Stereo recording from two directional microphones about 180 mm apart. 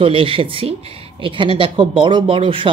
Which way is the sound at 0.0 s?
30° right (ahead or behind).